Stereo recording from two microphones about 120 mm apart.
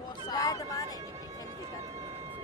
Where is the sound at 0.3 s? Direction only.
30° left (ahead or behind).